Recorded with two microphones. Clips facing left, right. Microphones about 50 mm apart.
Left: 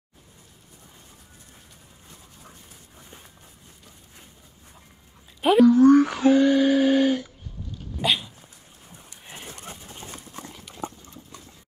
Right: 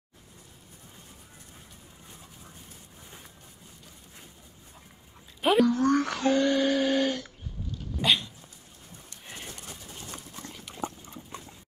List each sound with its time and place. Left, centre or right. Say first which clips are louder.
5.4 s speech: left 7 dB; centre
8.0 s dog: left 1 dB; centre
10.0 s horse: left 2 dB; left
10.5 s horse: even; centre